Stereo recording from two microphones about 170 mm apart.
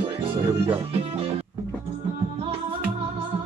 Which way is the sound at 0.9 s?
35° right (ahead or behind).